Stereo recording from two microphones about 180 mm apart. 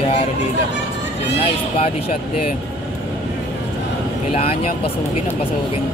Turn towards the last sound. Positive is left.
turn(degrees=35)  # may be behind; listen again after turning